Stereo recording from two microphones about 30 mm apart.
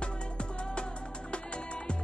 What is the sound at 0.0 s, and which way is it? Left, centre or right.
Music, left.